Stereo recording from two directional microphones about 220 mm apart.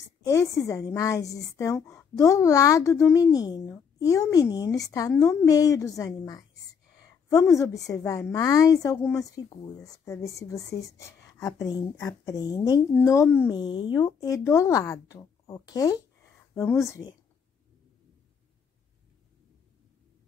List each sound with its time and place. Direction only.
0.2 s speech: 15° left (ahead or behind)
7.5 s speech: 15° left (ahead or behind)